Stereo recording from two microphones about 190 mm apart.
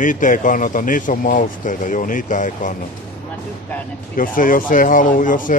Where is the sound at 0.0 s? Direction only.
45° left (ahead or behind).